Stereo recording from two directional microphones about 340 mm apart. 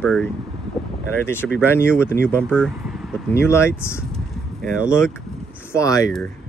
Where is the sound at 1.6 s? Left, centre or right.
Centre.